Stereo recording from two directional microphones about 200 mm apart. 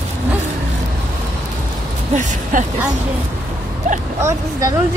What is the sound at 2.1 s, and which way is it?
Speech, 35° right (ahead or behind).